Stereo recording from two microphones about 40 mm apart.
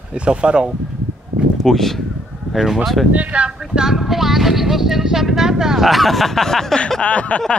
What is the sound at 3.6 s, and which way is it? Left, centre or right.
Speech, centre.